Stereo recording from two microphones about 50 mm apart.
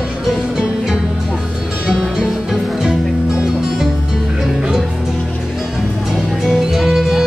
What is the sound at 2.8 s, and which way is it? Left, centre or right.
Music, centre.